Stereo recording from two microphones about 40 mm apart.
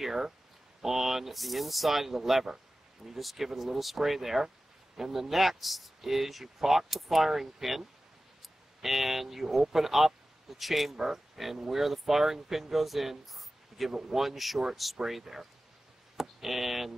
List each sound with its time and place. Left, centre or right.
0.0 s speech: centre
8.8 s speech: centre
11.8 s speech: centre